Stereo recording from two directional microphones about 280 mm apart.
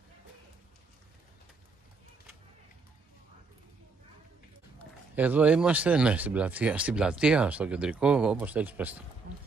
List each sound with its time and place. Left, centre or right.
5.1 s speech: centre
9.3 s boat: right